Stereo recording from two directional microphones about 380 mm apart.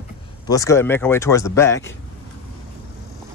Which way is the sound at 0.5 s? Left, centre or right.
Centre.